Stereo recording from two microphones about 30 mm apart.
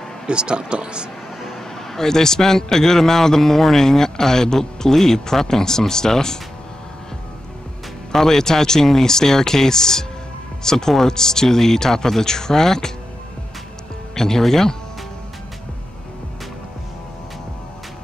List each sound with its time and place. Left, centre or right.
0.3 s speech: right
1.4 s a man's voice: centre
8.1 s a man's voice: centre
14.1 s a man's voice: centre